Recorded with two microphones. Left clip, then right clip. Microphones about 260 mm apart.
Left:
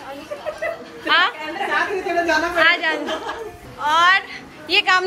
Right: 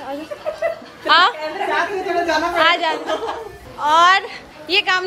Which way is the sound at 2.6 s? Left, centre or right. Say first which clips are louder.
Right 1 dB; centre.